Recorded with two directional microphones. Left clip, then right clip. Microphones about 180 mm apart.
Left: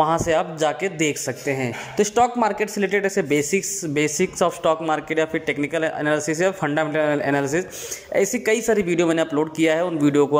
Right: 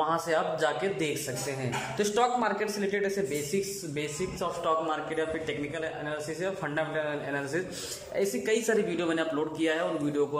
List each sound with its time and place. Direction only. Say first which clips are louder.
0.0 s a man's voice: left 8 dB; 20° left (ahead or behind)